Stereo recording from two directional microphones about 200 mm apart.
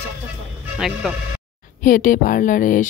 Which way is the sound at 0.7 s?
5° right (ahead or behind).